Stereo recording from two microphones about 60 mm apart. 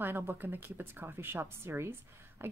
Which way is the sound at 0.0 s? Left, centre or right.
Right.